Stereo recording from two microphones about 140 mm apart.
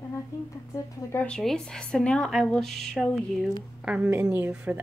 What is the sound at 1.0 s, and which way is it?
Speech, 20° left (ahead or behind).